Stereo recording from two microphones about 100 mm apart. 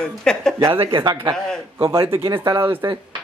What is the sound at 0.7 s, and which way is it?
Speech, 65° right (ahead or behind).